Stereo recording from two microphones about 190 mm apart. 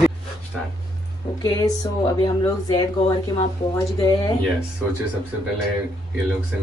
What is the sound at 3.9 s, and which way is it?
Speech, 20° left (ahead or behind).